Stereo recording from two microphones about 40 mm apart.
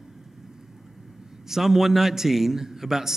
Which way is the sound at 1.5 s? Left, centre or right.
Centre.